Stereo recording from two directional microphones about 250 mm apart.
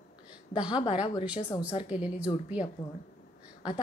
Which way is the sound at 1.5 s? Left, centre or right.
Centre.